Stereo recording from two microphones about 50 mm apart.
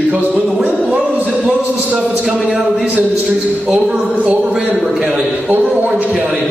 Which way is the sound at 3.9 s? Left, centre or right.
Right.